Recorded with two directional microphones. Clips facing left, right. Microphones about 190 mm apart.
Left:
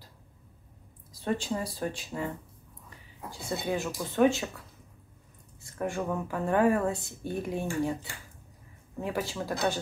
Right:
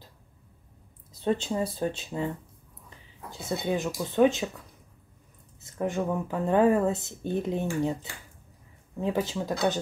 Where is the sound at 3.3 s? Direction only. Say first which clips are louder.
Right 2 dB; 20° right (ahead or behind).